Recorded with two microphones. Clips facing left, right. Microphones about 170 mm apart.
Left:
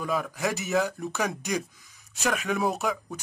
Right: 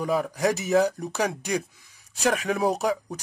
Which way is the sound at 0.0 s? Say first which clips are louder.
Right 4 dB; 35° right (ahead or behind).